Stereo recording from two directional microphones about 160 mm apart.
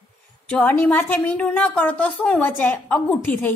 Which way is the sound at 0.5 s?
10° left (ahead or behind).